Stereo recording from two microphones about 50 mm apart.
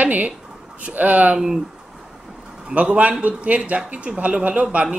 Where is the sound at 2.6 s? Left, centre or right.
Right.